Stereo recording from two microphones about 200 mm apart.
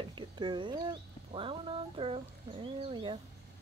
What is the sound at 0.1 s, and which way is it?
Speech, 25° right (ahead or behind).